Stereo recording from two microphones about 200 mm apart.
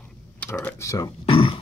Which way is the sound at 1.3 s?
25° left (ahead or behind).